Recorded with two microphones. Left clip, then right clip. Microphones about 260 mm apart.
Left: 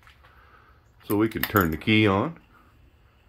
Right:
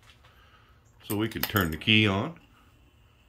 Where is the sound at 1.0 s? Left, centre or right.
Left.